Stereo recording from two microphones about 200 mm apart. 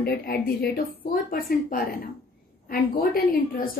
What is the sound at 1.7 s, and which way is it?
A woman's voice, 45° left (ahead or behind).